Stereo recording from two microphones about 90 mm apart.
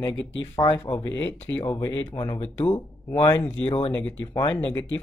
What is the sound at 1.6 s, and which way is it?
Speech, 35° left (ahead or behind).